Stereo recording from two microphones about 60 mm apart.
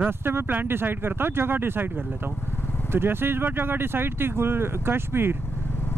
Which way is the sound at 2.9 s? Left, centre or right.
Right.